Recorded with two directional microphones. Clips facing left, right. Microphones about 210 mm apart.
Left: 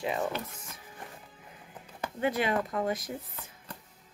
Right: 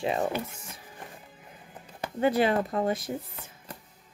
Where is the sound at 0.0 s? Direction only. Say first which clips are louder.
Right 3 dB; 25° right (ahead or behind).